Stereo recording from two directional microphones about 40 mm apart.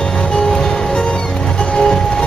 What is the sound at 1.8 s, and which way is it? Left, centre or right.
Music, left.